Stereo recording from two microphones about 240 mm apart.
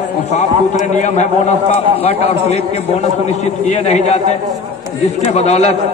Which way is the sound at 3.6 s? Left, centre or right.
Left.